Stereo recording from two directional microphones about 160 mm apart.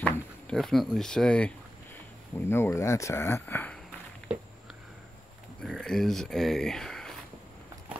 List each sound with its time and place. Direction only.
0.0 s speech: 5° left (ahead or behind)
5.6 s speech: 5° left (ahead or behind)